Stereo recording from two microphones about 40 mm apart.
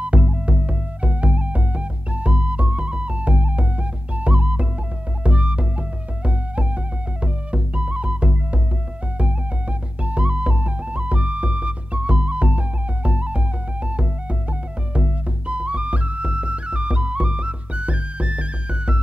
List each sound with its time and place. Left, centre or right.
0.0 s music: right